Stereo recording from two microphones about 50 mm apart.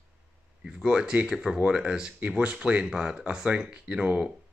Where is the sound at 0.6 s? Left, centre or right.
Centre.